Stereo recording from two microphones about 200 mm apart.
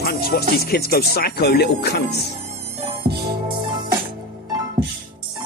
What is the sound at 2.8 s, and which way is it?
Music, 30° right (ahead or behind).